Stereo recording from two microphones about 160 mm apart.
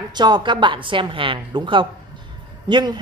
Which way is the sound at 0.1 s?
30° right (ahead or behind).